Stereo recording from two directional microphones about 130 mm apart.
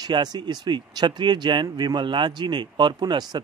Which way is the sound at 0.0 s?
30° right (ahead or behind).